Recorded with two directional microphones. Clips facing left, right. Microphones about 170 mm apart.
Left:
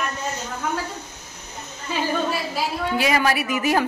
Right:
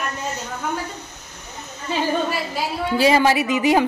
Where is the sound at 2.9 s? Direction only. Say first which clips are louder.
Right 6 dB; 30° right (ahead or behind).